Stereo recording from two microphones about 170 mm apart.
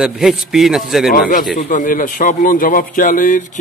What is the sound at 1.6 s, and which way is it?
A man's voice, 50° left (ahead or behind).